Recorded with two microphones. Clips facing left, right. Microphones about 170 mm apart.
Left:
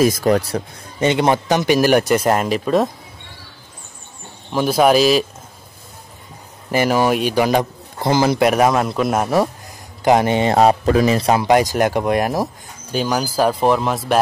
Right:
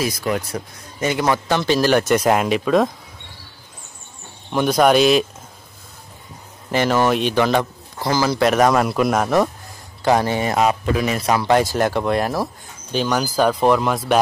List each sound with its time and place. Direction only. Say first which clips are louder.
0.0 s a man's voice: left 7 dB; 45° left (ahead or behind); by 2.9 s centre (ahead or behind)
4.5 s speech: left 1 dB; 5° left (ahead or behind)
6.7 s a man's voice: left 1 dB; 10° left (ahead or behind)
8.4 s a man's voice: left 1 dB; 10° left (ahead or behind)
8.8 s speech: even; centre (ahead or behind)
10.0 s speech: left 3 dB; 20° left (ahead or behind)
10.5 s speech: left 6 dB; 35° left (ahead or behind)
11.4 s a man's voice: left 2 dB; 15° left (ahead or behind)